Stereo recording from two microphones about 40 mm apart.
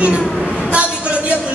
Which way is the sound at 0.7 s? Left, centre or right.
Right.